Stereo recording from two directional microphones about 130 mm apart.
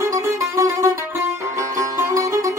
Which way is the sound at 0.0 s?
25° right (ahead or behind).